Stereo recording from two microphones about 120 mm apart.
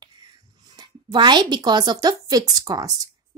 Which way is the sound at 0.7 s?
40° right (ahead or behind).